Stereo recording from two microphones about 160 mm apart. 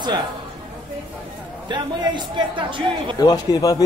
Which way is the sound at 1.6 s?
30° right (ahead or behind).